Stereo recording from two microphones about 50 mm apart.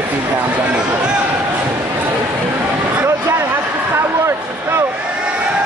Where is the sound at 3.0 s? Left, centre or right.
Right.